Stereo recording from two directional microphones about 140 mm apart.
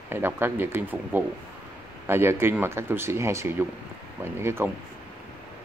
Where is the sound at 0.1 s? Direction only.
15° right (ahead or behind).